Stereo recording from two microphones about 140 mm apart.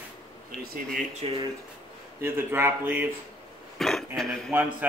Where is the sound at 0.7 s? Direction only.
90° right.